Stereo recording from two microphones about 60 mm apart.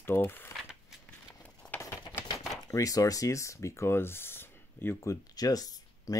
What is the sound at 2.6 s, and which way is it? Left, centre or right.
Speech, left.